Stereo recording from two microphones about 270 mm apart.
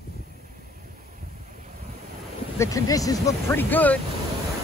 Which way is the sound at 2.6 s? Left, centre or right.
Centre.